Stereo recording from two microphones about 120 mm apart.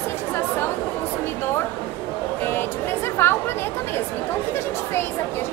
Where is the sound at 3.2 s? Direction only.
20° left (ahead or behind).